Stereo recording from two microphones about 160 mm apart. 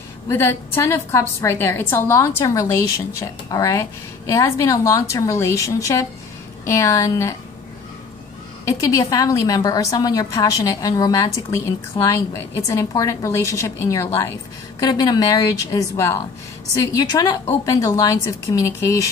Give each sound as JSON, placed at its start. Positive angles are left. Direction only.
{"t": 0.3, "sound": "a woman's voice", "side_deg": 15}
{"t": 8.6, "sound": "a woman's voice", "side_deg": 20}